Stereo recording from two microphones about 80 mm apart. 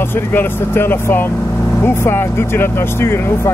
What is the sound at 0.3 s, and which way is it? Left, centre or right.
Speech, left.